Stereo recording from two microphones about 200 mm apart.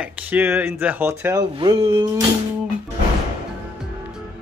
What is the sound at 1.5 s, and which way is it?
Speech, 25° right (ahead or behind).